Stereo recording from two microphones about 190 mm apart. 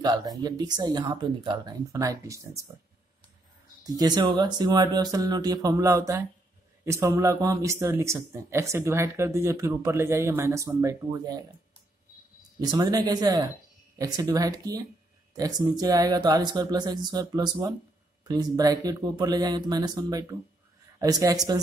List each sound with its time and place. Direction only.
0.0 s speech: 20° right (ahead or behind)
3.8 s speech: 20° right (ahead or behind)
12.5 s speech: 20° right (ahead or behind)